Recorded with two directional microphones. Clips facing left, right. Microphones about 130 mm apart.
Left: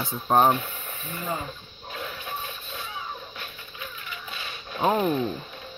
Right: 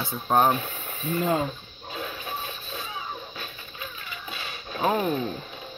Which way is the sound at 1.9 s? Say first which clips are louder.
Right 1 dB; 10° right (ahead or behind).